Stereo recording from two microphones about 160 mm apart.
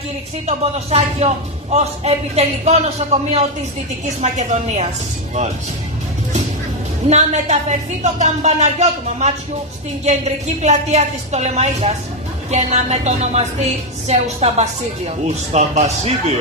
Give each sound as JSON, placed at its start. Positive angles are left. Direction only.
{"t": 0.5, "sound": "a man's voice", "side_deg": -40}
{"t": 7.1, "sound": "a woman's voice", "side_deg": -45}